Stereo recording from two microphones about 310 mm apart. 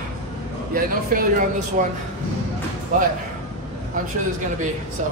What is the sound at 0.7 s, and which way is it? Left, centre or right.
Speech, right.